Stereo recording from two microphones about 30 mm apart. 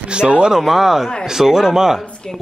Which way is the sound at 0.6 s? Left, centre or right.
Centre.